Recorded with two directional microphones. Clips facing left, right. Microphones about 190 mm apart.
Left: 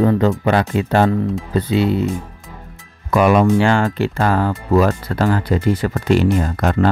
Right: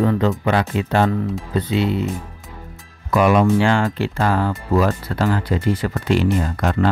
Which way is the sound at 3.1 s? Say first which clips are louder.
Left 2 dB; 50° left (ahead or behind).